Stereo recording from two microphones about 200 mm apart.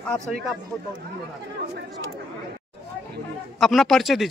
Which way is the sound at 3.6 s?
Centre (ahead or behind).